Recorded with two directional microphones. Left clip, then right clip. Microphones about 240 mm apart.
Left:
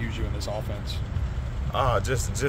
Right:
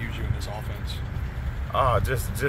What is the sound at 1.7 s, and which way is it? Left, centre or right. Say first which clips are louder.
Speech: right 2 dB; centre.